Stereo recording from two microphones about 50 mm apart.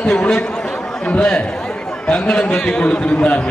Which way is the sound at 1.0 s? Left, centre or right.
Left.